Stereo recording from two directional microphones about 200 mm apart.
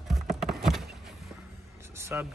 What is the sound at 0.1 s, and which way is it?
Clip-clop, centre (ahead or behind).